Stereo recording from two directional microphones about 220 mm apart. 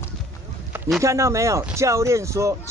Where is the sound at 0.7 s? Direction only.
10° right (ahead or behind).